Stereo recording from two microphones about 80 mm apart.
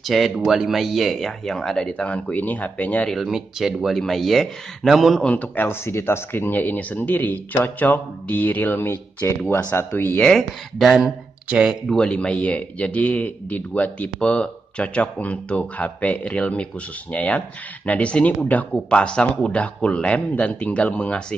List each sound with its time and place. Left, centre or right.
0.0 s speech: centre
3.1 s speech: centre
5.2 s speech: centre
10.3 s speech: centre
11.9 s speech: centre